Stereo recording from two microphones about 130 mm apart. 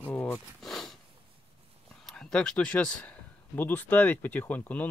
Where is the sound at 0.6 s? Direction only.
Centre (ahead or behind).